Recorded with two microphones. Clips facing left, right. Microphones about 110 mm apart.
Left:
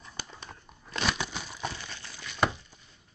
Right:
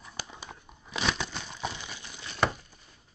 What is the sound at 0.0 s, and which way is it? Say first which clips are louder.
Crumpling: right 1 dB; 5° right (ahead or behind).